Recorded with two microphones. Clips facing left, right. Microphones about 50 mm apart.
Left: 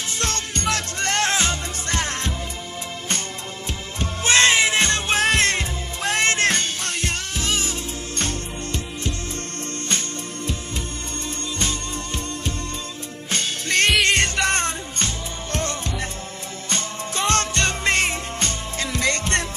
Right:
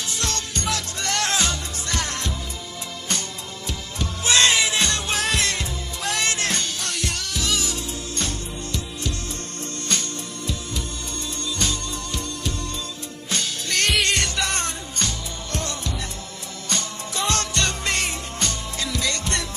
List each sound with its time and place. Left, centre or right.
0.2 s music: left
3.6 s music: left
17.3 s music: left